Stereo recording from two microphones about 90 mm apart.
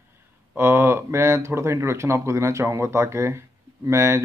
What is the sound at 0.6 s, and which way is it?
Speech, 25° right (ahead or behind).